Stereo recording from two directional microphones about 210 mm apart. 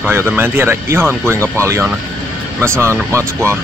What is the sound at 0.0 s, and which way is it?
Speech, 10° right (ahead or behind).